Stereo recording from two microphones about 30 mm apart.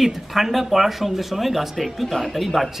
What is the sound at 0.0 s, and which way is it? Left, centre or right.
Speech, centre.